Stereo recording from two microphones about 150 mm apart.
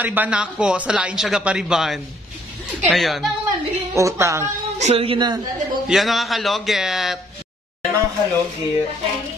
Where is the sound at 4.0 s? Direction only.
20° right (ahead or behind).